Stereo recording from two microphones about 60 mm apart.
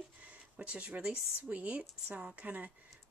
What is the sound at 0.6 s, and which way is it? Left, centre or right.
Speech, right.